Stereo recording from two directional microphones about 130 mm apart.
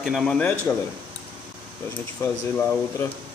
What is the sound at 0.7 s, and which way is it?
Speech, 20° left (ahead or behind).